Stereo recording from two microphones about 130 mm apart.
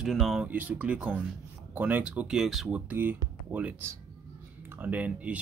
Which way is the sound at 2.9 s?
15° right (ahead or behind).